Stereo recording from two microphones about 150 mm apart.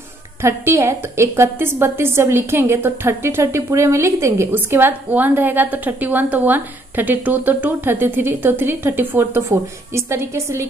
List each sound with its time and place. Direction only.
0.4 s a woman's voice: 15° right (ahead or behind)